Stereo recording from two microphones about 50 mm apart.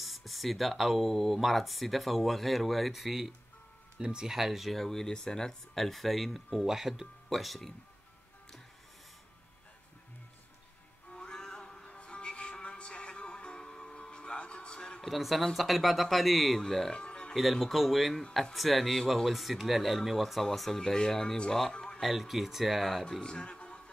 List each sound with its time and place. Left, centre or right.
0.0 s speech: centre
4.0 s speech: centre
4.4 s speech: centre
11.1 s music: centre
15.0 s speech: centre
16.9 s music: centre
17.3 s speech: centre
22.0 s speech: centre